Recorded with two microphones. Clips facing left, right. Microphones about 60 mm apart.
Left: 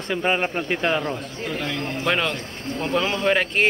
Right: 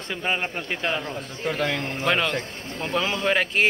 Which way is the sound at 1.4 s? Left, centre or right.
Right.